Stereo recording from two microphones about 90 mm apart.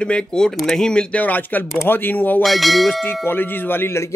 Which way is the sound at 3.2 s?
25° left (ahead or behind).